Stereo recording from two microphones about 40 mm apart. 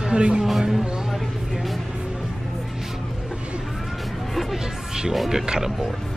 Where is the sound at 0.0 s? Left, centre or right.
Right.